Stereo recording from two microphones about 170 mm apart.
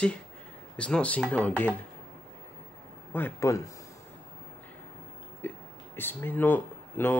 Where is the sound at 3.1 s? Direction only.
15° left (ahead or behind).